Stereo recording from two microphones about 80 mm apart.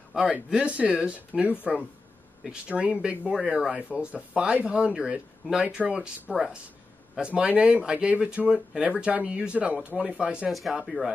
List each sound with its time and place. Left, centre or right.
0.3 s speech: centre
10.5 s speech: centre